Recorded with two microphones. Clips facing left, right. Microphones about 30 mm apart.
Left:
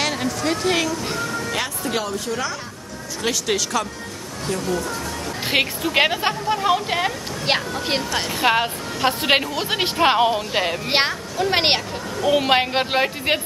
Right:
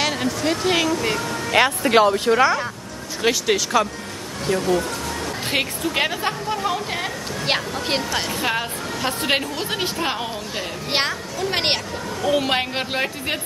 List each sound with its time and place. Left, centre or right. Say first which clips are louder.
0.0 s a sound: right 1 dB; centre
1.9 s speech: right 9 dB; right
3.2 s speech: right 3 dB; centre
4.6 s speech: right 3 dB; right
5.5 s speech: left 3 dB; centre
6.3 s speech: left 4 dB; left
7.4 s speech: left 1 dB; centre
8.4 s a woman's voice: left 4 dB; left
10.0 s speech: left 8 dB; left
10.9 s speech: left 2 dB; centre